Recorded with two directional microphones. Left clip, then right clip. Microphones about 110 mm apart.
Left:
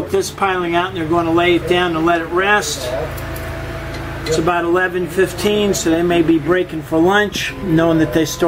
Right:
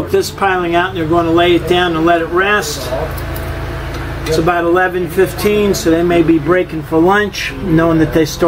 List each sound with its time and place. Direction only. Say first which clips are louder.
0.1 s speech: right 4 dB; 15° left (ahead or behind)
4.3 s speech: right 3 dB; 15° left (ahead or behind)